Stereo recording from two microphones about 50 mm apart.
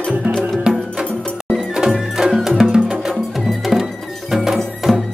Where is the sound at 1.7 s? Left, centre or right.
Centre.